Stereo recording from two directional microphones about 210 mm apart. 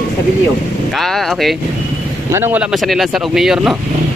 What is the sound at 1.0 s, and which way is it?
Speech, centre (ahead or behind).